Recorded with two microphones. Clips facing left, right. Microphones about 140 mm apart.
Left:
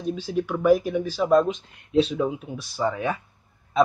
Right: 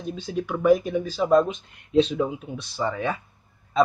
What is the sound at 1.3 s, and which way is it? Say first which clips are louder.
Speech: even; 15° right (ahead or behind).